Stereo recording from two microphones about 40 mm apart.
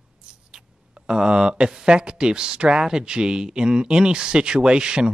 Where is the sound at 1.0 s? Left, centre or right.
Centre.